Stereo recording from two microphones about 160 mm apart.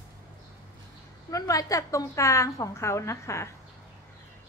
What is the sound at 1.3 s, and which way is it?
A woman's voice, 20° left (ahead or behind).